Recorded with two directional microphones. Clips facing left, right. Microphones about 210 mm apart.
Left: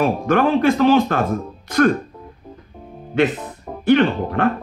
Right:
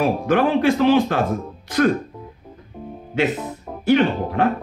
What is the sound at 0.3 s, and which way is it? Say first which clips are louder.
Speech: left 1 dB; 45° left (ahead or behind).